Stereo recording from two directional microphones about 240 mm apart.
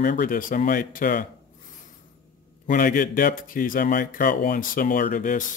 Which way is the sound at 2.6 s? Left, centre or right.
Left.